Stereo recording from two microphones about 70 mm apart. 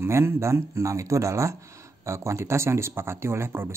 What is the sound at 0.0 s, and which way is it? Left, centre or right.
Speech, right.